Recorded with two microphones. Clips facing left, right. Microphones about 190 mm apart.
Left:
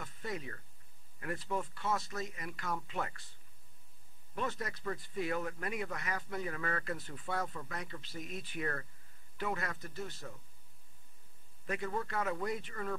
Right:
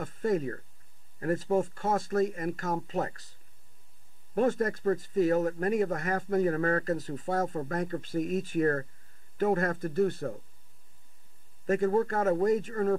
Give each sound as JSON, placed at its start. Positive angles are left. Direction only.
{"t": 0.0, "sound": "speech", "side_deg": -50}
{"t": 4.4, "sound": "speech", "side_deg": -50}
{"t": 11.6, "sound": "speech", "side_deg": -45}